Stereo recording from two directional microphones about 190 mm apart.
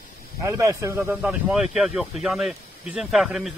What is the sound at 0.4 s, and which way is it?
Speech, 15° right (ahead or behind).